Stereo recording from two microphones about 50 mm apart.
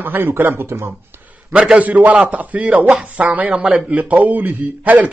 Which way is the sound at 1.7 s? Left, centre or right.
Right.